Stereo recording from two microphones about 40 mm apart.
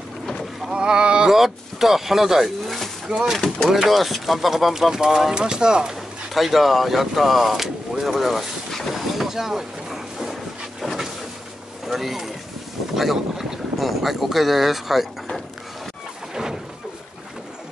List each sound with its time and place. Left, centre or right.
0.7 s boat: right
1.3 s speech: centre
3.7 s speech: centre
6.3 s speech: centre
11.9 s speech: centre